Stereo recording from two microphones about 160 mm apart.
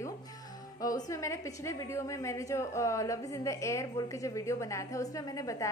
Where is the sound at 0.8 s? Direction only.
20° left (ahead or behind).